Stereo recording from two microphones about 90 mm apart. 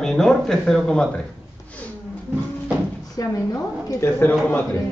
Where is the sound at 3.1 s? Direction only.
35° left (ahead or behind).